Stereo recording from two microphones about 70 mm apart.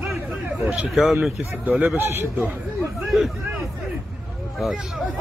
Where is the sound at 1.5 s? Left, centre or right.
Right.